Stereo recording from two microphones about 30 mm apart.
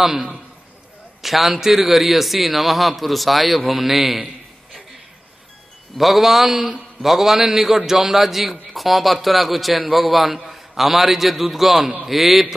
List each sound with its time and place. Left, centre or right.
0.0 s a man's voice: centre
1.2 s a man's voice: centre
5.9 s a man's voice: centre
6.5 s speech: centre
7.1 s a man's voice: centre